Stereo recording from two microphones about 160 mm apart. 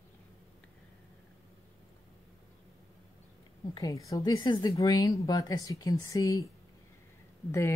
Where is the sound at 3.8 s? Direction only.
20° left (ahead or behind).